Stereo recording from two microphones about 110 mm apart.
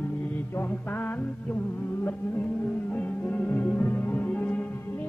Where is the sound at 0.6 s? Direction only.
20° left (ahead or behind).